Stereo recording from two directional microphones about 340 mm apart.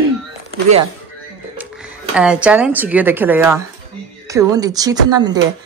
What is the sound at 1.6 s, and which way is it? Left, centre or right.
Speech, centre.